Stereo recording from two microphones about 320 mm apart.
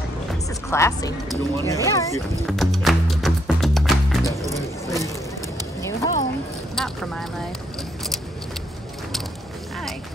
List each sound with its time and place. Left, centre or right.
0.7 s speech: centre
4.5 s vehicle: centre
5.8 s a sound: centre
6.7 s speech: centre